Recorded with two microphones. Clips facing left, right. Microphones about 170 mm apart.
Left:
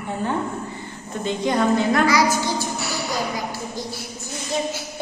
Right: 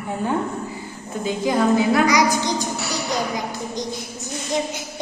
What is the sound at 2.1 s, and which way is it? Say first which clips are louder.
Music: right 1 dB; 15° right (ahead or behind).